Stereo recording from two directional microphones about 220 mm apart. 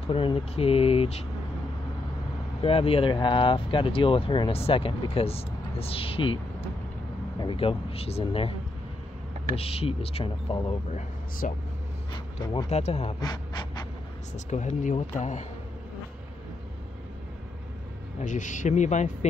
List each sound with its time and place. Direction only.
0.1 s speech: 25° left (ahead or behind)
2.6 s speech: 25° left (ahead or behind)
9.6 s speech: 25° left (ahead or behind)
14.3 s speech: 35° left (ahead or behind)
18.2 s speech: 35° left (ahead or behind)